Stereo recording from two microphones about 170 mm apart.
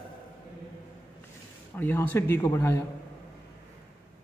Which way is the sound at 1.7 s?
10° left (ahead or behind).